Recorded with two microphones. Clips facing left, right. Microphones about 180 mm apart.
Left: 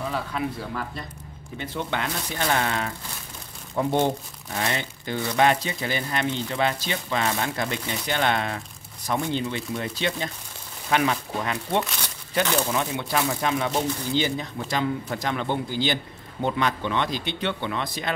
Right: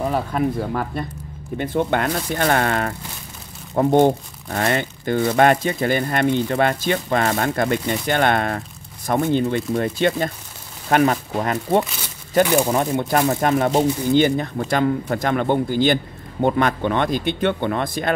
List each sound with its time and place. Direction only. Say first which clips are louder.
0.0 s speech: right 7 dB; 45° right (ahead or behind)